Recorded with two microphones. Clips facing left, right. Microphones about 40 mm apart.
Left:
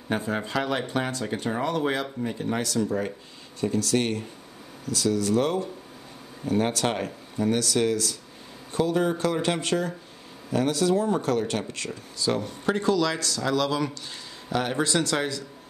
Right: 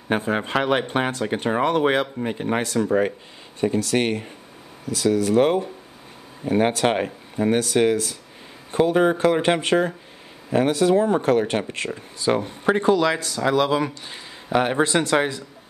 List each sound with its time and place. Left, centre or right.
0.1 s speech: right